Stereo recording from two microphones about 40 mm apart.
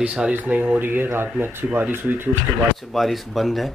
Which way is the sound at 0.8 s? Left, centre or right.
Right.